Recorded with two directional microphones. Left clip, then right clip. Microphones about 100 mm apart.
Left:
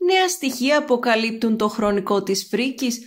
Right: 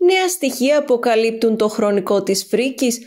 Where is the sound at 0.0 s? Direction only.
40° right (ahead or behind).